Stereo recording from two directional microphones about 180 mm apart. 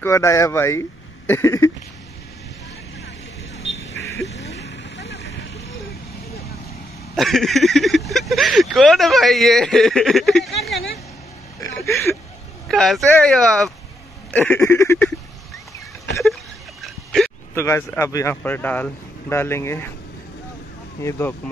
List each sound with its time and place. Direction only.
0.0 s speech: 15° left (ahead or behind)
3.8 s a sound: 15° left (ahead or behind)
4.6 s vehicle: 70° left (ahead or behind)
7.2 s speech: centre (ahead or behind)
11.6 s a sound: 15° left (ahead or behind)
12.6 s speech: 5° left (ahead or behind)
16.8 s a sound: centre (ahead or behind)
17.6 s speech: 15° left (ahead or behind)
21.0 s speech: 15° left (ahead or behind)